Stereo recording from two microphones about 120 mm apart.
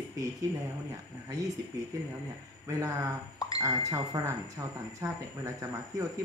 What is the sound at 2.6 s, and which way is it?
Speech, 25° right (ahead or behind).